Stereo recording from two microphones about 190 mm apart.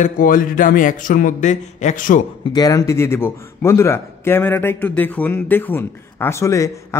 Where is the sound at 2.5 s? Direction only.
20° left (ahead or behind).